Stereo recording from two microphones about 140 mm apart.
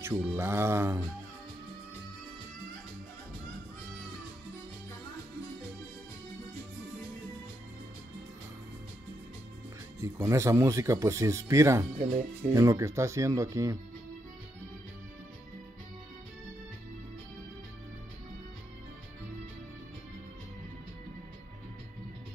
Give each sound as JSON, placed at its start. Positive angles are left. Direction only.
{"t": 0.0, "sound": "speech", "side_deg": -15}
{"t": 9.9, "sound": "speech", "side_deg": -20}